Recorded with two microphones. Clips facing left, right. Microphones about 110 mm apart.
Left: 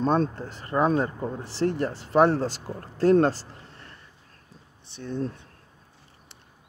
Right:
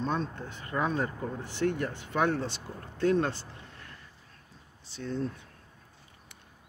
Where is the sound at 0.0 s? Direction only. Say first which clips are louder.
Left 8 dB; 45° left (ahead or behind).